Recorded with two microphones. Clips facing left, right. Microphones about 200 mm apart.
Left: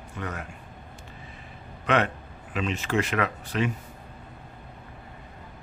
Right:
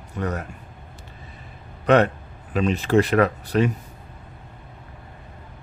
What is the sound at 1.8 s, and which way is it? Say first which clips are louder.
A man's voice: right 7 dB; 40° right (ahead or behind).